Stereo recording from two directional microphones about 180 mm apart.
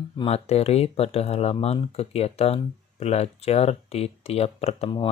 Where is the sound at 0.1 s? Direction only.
30° left (ahead or behind).